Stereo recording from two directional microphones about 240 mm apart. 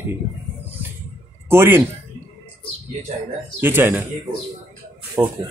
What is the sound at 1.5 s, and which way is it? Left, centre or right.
Speech, centre.